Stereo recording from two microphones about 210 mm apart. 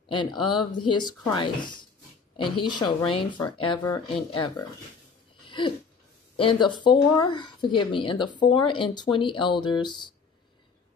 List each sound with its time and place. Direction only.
0.1 s speech: 20° left (ahead or behind)
6.3 s speech: 25° left (ahead or behind)